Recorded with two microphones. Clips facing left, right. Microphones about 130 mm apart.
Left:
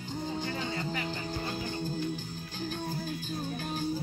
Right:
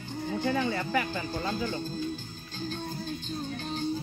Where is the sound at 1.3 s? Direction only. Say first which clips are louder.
Right 4 dB; 15° left (ahead or behind).